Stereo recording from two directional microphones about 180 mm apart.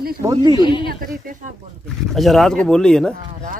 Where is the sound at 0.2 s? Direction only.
20° right (ahead or behind).